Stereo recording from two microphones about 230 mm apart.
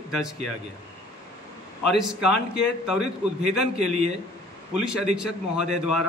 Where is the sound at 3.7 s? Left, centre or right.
Right.